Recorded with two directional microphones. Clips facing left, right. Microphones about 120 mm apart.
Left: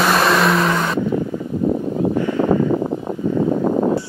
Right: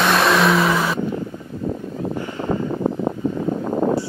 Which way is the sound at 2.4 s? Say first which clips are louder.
Left 7 dB; 40° left (ahead or behind).